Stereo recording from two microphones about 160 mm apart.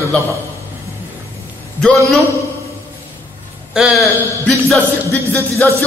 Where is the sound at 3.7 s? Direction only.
Centre (ahead or behind).